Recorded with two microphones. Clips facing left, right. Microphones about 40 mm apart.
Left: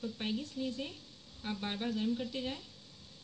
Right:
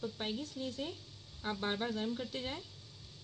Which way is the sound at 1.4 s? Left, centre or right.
Centre.